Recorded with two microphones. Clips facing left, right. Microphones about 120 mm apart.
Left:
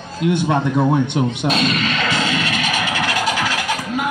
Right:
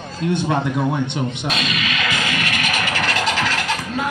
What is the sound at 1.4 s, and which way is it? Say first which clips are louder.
Speech: left 5 dB; 40° left (ahead or behind).